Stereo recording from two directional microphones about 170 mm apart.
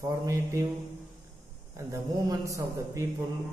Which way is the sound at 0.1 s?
20° right (ahead or behind).